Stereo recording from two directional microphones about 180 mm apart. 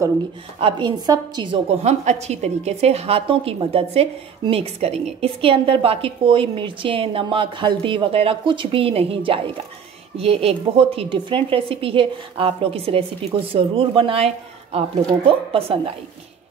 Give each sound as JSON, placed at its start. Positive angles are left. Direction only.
{"t": 0.6, "sound": "a woman's voice", "side_deg": -30}
{"t": 1.8, "sound": "a woman's voice", "side_deg": -40}